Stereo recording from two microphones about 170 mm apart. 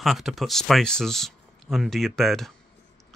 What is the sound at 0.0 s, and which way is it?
Speech, centre (ahead or behind).